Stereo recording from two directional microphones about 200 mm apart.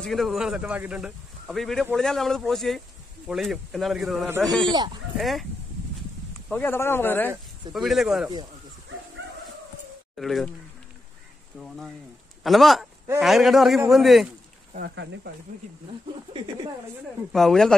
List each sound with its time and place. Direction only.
0.0 s speech: centre (ahead or behind)
4.6 s speech: 25° right (ahead or behind)
5.1 s speech: centre (ahead or behind)
6.5 s speech: 10° left (ahead or behind)
7.7 s speech: centre (ahead or behind)
10.1 s speech: centre (ahead or behind)
12.4 s speech: centre (ahead or behind)
14.7 s speech: 50° right (ahead or behind)
17.3 s speech: centre (ahead or behind)